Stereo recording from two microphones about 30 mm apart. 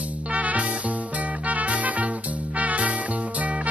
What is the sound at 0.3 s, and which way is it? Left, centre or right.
Music, right.